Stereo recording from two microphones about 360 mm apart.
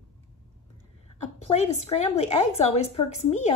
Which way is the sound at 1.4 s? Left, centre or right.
Centre.